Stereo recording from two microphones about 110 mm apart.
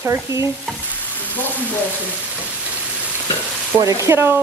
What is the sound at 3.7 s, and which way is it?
Stir, 30° right (ahead or behind).